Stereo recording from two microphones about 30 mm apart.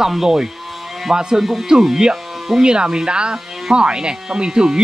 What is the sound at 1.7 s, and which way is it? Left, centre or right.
Speech, centre.